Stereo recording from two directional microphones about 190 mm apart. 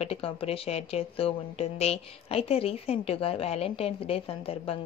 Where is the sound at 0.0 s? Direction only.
30° left (ahead or behind).